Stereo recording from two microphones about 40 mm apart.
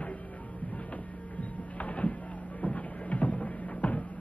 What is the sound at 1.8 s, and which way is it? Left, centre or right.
Music, left.